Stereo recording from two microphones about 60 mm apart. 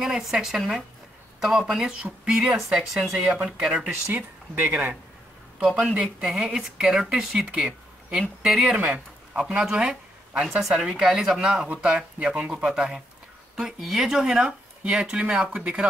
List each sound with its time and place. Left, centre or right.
0.0 s speech: centre
4.1 s speech: right
5.8 s speech: centre
8.7 s speech: right